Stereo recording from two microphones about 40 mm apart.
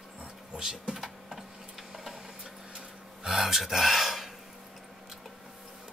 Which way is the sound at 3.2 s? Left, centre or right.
Centre.